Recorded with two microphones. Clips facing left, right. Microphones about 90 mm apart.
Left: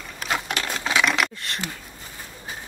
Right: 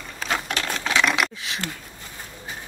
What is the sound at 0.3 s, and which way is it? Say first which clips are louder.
Sewing machine: even; 10° left (ahead or behind).